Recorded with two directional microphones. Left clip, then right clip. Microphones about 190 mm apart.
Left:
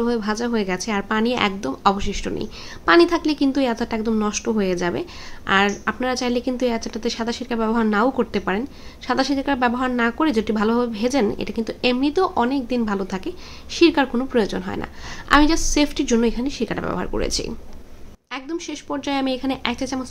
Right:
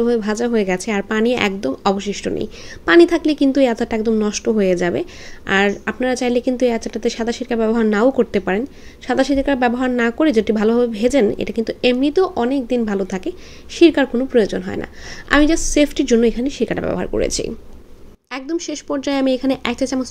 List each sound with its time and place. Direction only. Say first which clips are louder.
0.0 s a woman's voice: right 5 dB; 20° right (ahead or behind)